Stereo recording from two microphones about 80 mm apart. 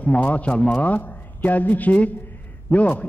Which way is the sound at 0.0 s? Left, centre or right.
Centre.